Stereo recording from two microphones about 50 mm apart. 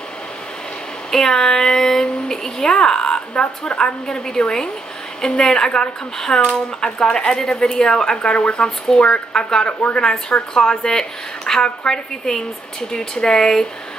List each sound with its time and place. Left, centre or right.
1.1 s a woman's voice: centre; by 10.0 s left
10.5 s a woman's voice: centre